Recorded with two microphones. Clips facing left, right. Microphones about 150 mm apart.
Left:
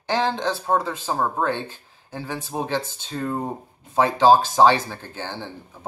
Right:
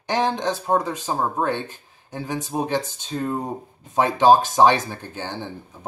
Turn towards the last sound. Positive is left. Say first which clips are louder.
# right 2 dB
turn(degrees=-15)  # may be behind; listen again after turning